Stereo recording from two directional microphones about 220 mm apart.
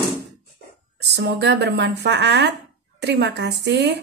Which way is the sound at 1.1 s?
50° right (ahead or behind).